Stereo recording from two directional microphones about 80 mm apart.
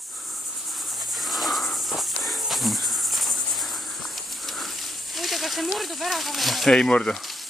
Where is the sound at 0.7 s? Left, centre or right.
Centre.